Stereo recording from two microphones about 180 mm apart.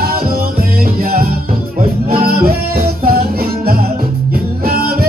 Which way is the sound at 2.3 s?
55° right (ahead or behind).